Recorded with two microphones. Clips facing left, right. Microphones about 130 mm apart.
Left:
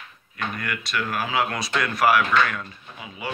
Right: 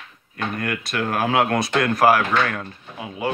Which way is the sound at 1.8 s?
45° right (ahead or behind).